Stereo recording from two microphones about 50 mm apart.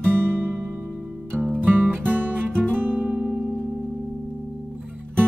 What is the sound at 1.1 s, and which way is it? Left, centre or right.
Music, centre.